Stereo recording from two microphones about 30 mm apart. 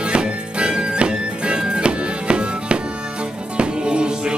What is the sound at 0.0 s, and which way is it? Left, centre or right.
Music, right.